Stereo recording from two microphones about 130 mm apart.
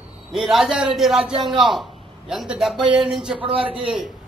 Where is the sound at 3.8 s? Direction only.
5° right (ahead or behind).